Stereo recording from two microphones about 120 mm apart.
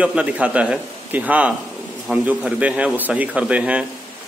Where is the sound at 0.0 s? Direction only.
10° right (ahead or behind).